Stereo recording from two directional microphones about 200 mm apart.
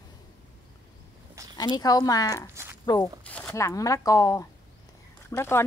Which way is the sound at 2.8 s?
20° left (ahead or behind).